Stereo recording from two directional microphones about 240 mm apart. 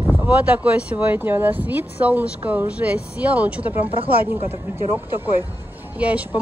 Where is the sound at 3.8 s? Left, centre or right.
Right.